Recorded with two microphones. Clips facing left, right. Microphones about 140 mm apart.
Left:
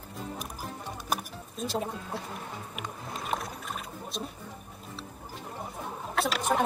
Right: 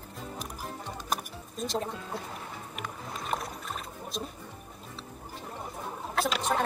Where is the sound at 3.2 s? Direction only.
Centre (ahead or behind).